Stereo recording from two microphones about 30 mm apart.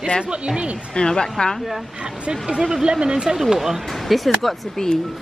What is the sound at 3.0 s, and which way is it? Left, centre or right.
Speech, right.